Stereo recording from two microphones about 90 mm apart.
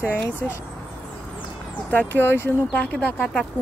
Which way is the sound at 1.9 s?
20° left (ahead or behind).